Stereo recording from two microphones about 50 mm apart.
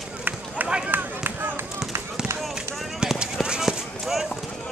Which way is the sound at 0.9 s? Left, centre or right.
Right.